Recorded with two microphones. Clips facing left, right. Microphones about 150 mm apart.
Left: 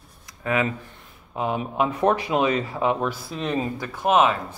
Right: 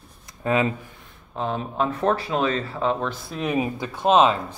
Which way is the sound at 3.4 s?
10° right (ahead or behind).